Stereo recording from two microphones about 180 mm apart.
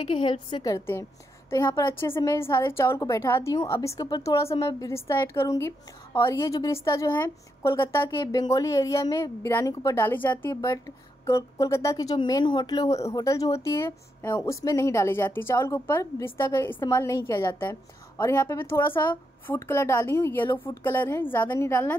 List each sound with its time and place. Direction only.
0.0 s a woman's voice: 25° left (ahead or behind)